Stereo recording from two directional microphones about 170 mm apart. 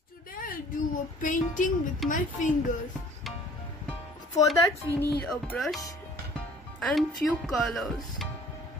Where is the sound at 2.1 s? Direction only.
50° left (ahead or behind).